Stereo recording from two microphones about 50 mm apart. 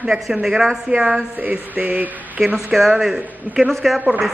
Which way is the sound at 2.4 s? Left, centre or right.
Centre.